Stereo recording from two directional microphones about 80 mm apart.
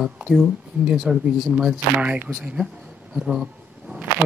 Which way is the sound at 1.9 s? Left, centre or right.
Right.